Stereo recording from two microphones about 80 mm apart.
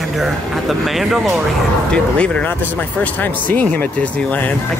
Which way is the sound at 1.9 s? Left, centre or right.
Centre.